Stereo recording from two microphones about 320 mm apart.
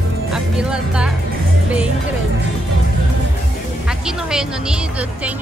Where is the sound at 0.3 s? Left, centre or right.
Centre.